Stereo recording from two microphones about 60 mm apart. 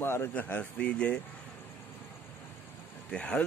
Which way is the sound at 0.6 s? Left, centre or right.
Left.